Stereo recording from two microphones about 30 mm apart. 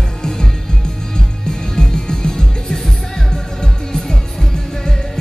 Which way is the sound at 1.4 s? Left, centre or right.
Left.